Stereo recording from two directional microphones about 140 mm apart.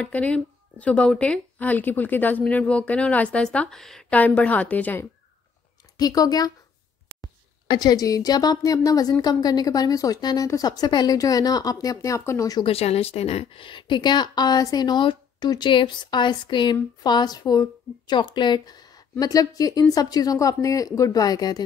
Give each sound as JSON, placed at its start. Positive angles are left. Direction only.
{"t": 0.0, "sound": "speech", "side_deg": 10}
{"t": 5.9, "sound": "speech", "side_deg": 25}
{"t": 12.6, "sound": "a woman's voice", "side_deg": 45}